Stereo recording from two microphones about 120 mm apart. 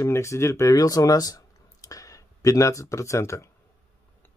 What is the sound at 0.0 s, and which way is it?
Speech, 25° left (ahead or behind).